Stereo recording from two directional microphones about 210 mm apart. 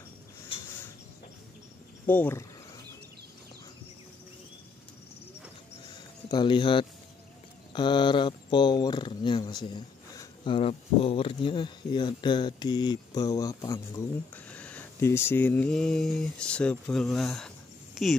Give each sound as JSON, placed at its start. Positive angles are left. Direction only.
{"t": 2.0, "sound": "speech", "side_deg": 10}
{"t": 6.3, "sound": "speech", "side_deg": 20}
{"t": 14.3, "sound": "a sound", "side_deg": 5}
{"t": 18.0, "sound": "a woman's voice", "side_deg": 0}